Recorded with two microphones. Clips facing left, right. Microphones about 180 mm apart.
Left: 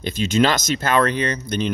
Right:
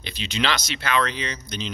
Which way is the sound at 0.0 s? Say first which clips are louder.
Left 9 dB; 45° left (ahead or behind).